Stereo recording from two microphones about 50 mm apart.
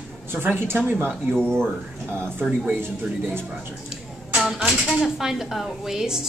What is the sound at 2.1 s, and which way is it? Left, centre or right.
Speech, right.